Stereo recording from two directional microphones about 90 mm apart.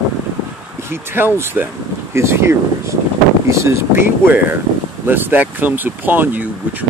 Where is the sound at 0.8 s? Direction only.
25° right (ahead or behind).